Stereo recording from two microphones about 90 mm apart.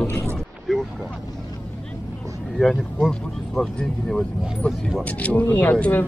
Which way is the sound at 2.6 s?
5° left (ahead or behind).